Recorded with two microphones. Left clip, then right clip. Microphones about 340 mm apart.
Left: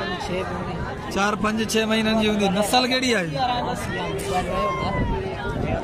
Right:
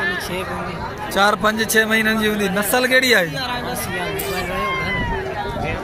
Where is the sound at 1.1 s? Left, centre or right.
Centre.